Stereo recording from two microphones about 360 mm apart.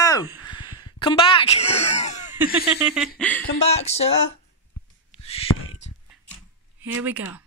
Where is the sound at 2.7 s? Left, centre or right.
Centre.